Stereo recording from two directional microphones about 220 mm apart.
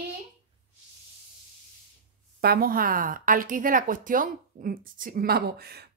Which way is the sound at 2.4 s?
45° right (ahead or behind).